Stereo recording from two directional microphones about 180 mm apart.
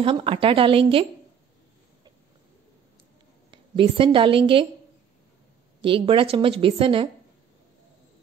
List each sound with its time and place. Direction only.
0.0 s a woman's voice: 30° right (ahead or behind)
3.5 s a woman's voice: 30° right (ahead or behind)
5.8 s a woman's voice: 30° right (ahead or behind)